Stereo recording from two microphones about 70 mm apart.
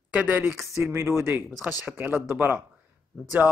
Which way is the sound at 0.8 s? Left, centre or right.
Right.